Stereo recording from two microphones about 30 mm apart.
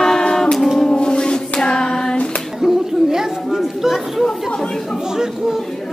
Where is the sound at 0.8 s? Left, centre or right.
Left.